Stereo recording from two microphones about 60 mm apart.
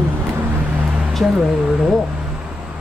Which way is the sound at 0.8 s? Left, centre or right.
Centre.